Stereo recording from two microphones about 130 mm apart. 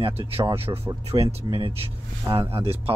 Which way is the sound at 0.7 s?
30° right (ahead or behind).